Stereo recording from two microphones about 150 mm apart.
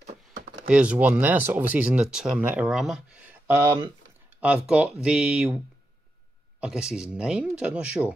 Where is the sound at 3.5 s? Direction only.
20° right (ahead or behind).